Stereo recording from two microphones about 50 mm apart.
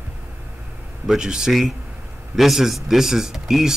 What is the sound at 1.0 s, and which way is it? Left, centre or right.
Speech, centre.